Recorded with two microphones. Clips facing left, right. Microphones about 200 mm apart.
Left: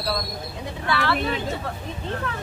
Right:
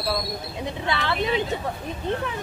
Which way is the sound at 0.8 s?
20° right (ahead or behind).